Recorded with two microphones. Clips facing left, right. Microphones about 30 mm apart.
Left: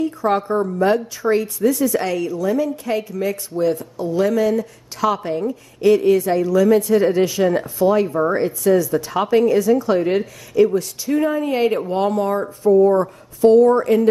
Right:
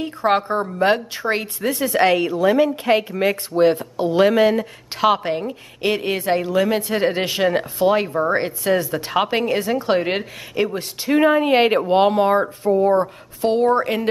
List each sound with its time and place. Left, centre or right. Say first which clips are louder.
0.0 s a woman's voice: even; right